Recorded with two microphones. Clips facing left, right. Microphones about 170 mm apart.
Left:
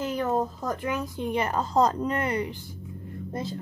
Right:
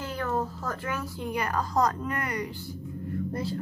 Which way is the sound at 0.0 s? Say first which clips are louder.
Left 4 dB; 20° left (ahead or behind).